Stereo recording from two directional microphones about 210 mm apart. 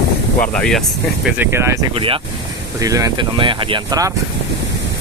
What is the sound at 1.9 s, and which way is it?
Speech, 25° right (ahead or behind).